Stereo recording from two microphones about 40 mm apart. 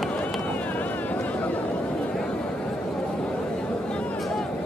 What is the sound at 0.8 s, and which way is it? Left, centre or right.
Vehicle, left.